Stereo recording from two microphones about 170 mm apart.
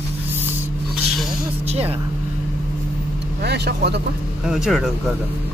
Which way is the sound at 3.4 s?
75° right (ahead or behind).